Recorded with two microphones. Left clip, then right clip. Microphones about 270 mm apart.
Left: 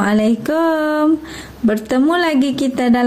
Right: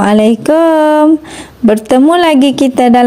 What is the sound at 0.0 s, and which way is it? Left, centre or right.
Speech, right.